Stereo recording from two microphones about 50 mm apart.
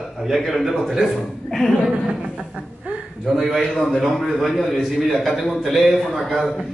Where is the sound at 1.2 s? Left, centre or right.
Centre.